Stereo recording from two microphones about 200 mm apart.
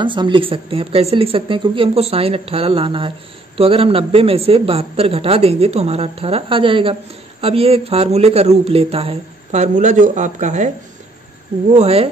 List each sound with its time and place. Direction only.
0.0 s a man's voice: 25° right (ahead or behind)
11.7 s speech: 30° right (ahead or behind)